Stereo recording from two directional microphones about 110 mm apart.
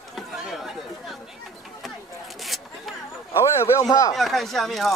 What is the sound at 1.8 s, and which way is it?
Zipper, centre (ahead or behind).